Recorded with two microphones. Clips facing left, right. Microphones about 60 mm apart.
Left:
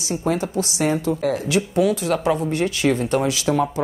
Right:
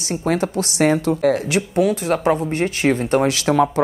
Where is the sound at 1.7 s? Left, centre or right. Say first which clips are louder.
Right 2 dB; right.